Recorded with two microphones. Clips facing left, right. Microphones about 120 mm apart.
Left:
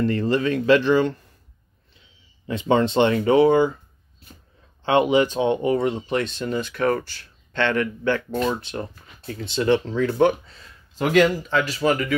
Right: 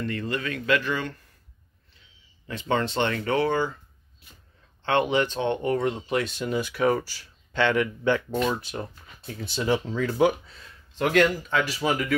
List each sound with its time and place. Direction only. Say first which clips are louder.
0.0 s speech: left 9 dB; 35° left (ahead or behind)
2.4 s speech: left 6 dB; 20° left (ahead or behind)
4.8 s speech: left 5 dB; 10° left (ahead or behind); by 8.4 s 15° right (ahead or behind)
8.5 s speech: left 3 dB; 5° right (ahead or behind)